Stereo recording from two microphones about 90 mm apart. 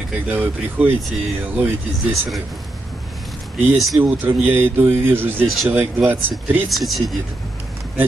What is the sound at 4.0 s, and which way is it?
Speech, 20° right (ahead or behind).